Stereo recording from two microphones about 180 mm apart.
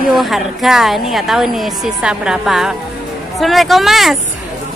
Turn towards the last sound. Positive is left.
turn(degrees=0)  # may be behind; listen again after turning